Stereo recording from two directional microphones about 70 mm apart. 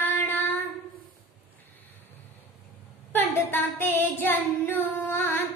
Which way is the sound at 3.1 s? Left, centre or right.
Left.